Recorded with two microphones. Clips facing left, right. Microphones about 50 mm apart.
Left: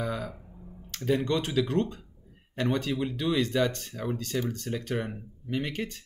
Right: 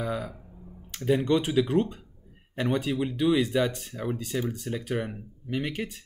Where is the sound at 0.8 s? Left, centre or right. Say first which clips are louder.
Right 3 dB; centre.